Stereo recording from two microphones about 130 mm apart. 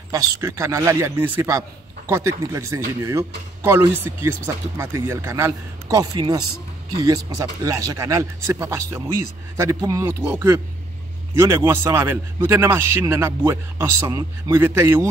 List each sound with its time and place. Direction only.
0.1 s speech: 20° right (ahead or behind)